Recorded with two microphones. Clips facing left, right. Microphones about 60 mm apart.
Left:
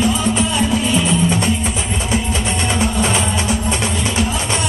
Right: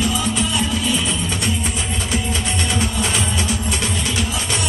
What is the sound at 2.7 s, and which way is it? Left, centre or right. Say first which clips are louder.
Music: left 5 dB; left.